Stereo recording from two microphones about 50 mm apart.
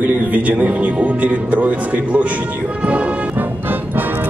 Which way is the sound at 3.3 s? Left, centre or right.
Right.